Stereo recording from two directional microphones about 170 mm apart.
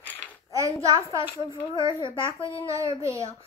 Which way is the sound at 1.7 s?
30° left (ahead or behind).